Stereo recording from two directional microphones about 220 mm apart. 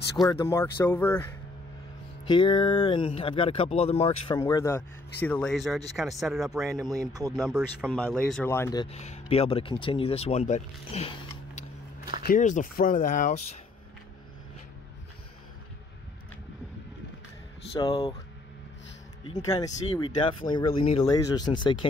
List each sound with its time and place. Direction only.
0.3 s speech: 15° left (ahead or behind)
2.2 s speech: 20° left (ahead or behind)
4.4 s speech: 15° left (ahead or behind)
8.6 s speech: 25° left (ahead or behind)
12.2 s speech: 40° left (ahead or behind)
17.7 s speech: 25° left (ahead or behind)
19.4 s speech: 15° left (ahead or behind)